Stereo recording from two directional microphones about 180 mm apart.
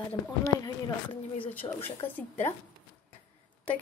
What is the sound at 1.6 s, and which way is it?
Speech, 30° left (ahead or behind).